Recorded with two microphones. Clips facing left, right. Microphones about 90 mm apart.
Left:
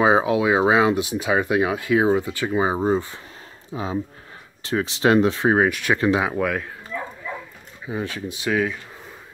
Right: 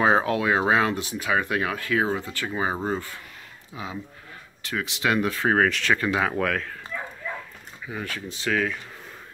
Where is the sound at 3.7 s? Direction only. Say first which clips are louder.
Left 8 dB; 35° left (ahead or behind).